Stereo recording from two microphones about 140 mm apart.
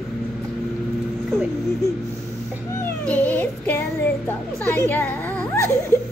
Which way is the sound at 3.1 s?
10° left (ahead or behind).